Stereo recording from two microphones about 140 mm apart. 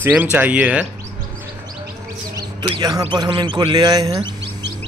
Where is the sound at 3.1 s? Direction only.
35° right (ahead or behind).